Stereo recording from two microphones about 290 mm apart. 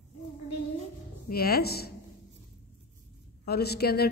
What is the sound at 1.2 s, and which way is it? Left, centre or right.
Speech, left.